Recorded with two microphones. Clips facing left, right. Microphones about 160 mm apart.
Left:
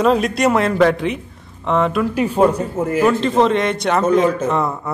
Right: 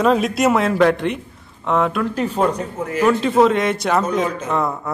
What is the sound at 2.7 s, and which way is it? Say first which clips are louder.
Speech: left 5 dB; 50° left (ahead or behind).